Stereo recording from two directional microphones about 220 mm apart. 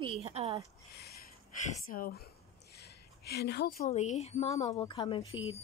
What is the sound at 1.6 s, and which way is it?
Speech, 35° left (ahead or behind).